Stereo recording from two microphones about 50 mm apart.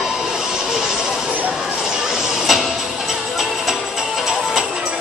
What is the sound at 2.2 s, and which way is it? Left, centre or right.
Music, centre.